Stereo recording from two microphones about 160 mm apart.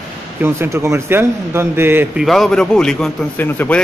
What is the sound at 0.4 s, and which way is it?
A man's voice, 15° right (ahead or behind).